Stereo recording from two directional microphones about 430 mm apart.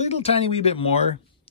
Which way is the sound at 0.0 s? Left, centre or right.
Centre.